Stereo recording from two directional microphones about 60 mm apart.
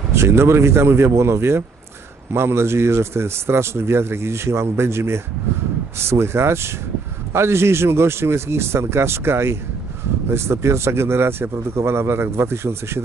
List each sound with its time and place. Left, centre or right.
0.1 s speech: right